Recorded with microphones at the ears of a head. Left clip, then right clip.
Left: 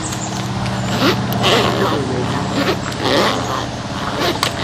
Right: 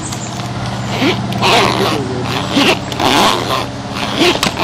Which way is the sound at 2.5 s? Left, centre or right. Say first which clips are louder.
Right 9 dB; right.